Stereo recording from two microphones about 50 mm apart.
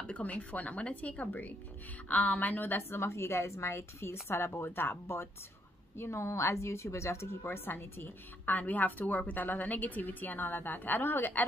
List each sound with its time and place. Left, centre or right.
0.0 s a woman's voice: left
4.6 s speech: left
5.9 s a woman's voice: left
7.4 s a woman's voice: left